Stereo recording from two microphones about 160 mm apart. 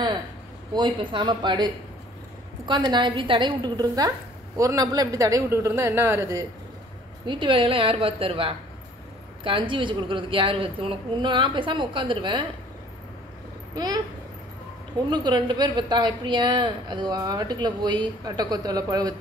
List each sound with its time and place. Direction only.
0.7 s speech: 25° right (ahead or behind)
7.2 s a woman's voice: 30° right (ahead or behind)
13.7 s speech: 25° right (ahead or behind)
15.0 s speech: 25° right (ahead or behind)